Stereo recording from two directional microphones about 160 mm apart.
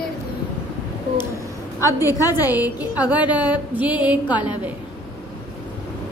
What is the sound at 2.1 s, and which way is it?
Speech, 20° left (ahead or behind).